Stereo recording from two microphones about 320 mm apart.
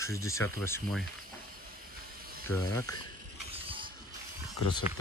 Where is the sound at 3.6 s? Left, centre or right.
Centre.